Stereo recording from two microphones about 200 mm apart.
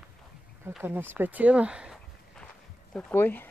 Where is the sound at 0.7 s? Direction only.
10° right (ahead or behind).